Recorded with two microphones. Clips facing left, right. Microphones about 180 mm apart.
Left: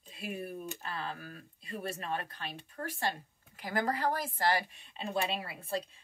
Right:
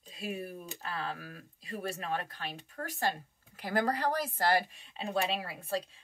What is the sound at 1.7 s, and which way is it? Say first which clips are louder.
A woman's voice: right 1 dB; 45° right (ahead or behind).